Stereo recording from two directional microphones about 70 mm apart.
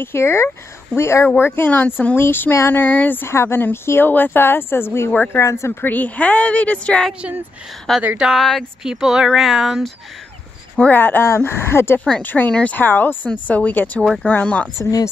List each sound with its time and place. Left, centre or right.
0.0 s speech: left
3.3 s speech: left
5.1 s speech: left
5.4 s speech: left
5.8 s speech: left
8.2 s speech: centre
10.9 s speech: left
11.2 s speech: left; by 14.7 s centre
14.8 s speech: left